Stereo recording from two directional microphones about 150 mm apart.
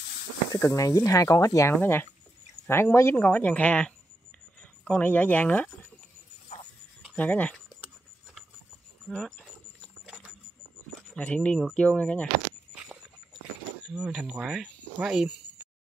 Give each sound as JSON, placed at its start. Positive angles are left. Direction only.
{"t": 0.5, "sound": "speech", "side_deg": 20}
{"t": 7.2, "sound": "speech", "side_deg": 10}
{"t": 9.1, "sound": "speech", "side_deg": 5}
{"t": 9.4, "sound": "a sound", "side_deg": -5}
{"t": 11.1, "sound": "speech", "side_deg": 10}
{"t": 13.8, "sound": "speech", "side_deg": -5}